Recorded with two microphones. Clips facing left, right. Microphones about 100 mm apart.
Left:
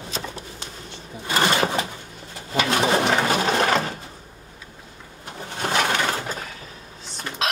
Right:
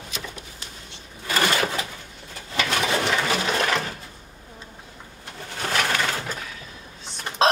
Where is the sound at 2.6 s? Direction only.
40° left (ahead or behind).